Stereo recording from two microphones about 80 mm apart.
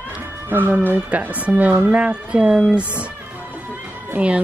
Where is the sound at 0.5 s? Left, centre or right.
Right.